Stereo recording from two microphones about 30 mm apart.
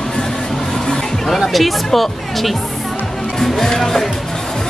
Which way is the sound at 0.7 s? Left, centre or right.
Centre.